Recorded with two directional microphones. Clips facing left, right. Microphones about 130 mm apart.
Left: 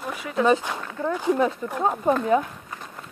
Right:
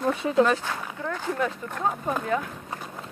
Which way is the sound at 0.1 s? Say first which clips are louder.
Right 6 dB; 25° right (ahead or behind).